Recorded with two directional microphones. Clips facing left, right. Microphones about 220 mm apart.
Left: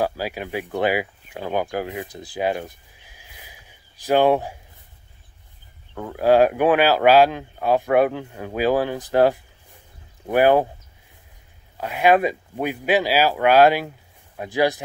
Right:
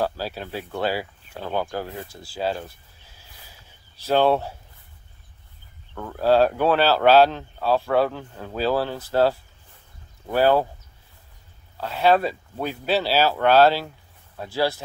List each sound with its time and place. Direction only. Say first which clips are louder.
0.0 s speech: left 2 dB; 15° left (ahead or behind)
5.9 s speech: left 2 dB; 15° left (ahead or behind)
11.7 s speech: left 2 dB; 15° left (ahead or behind)